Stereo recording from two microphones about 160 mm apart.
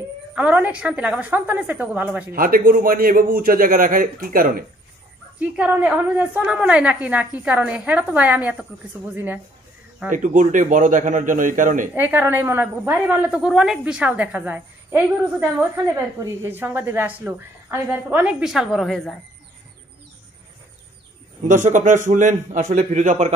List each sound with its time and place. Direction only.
0.3 s a woman's voice: 10° right (ahead or behind)
2.3 s a man's voice: 65° right (ahead or behind)
5.4 s a woman's voice: 10° right (ahead or behind)
10.1 s a man's voice: 55° right (ahead or behind)
11.9 s a woman's voice: 15° right (ahead or behind); by 19.1 s centre (ahead or behind)
21.5 s a man's voice: 50° right (ahead or behind)